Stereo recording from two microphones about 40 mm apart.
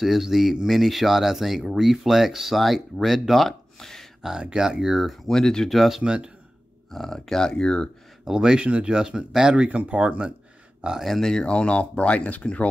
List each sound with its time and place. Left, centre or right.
0.0 s speech: centre
4.2 s speech: centre
5.3 s speech: centre
5.7 s speech: centre
6.0 s speech: right
6.9 s speech: centre
8.3 s speech: centre
9.6 s speech: right
11.1 s speech: centre
11.4 s speech: left